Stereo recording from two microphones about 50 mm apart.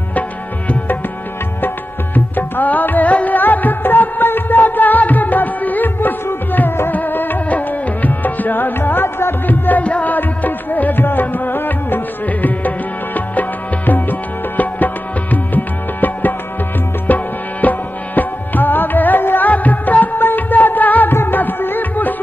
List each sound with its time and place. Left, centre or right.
2.1 s music: left
9.5 s music: left
15.3 s music: left
21.1 s music: left